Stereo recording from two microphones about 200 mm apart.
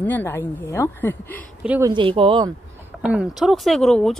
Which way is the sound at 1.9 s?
25° right (ahead or behind).